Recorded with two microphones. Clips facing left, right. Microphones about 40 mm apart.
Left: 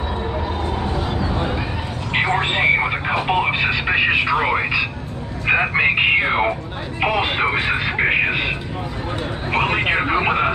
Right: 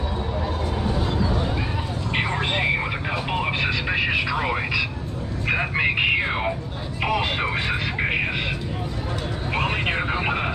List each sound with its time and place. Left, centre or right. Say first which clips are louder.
2.1 s a sound: left 6 dB; left
5.5 s radio: left 6 dB; left
7.0 s vehicle: left 4 dB; left